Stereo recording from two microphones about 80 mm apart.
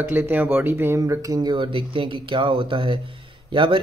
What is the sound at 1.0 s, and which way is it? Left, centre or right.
Speech, right.